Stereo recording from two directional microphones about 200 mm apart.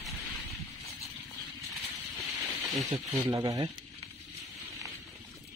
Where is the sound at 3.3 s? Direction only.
20° right (ahead or behind).